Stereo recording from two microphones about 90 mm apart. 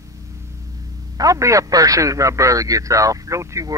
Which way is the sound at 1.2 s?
35° right (ahead or behind).